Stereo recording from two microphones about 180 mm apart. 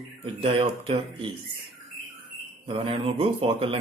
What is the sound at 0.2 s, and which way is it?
Speech, 30° right (ahead or behind).